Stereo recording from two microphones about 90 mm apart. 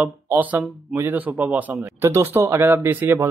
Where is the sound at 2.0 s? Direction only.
30° right (ahead or behind).